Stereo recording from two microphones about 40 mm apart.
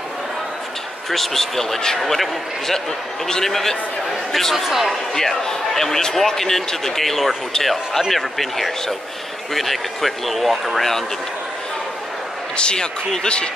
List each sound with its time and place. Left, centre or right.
1.1 s speech: centre
5.1 s speech: centre
12.5 s speech: left